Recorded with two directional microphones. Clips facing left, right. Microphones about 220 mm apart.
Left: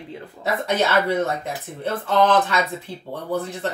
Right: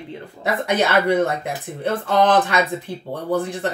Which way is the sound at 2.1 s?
15° right (ahead or behind).